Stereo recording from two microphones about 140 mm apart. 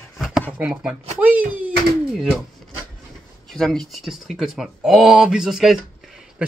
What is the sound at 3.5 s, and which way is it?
Speech, centre (ahead or behind).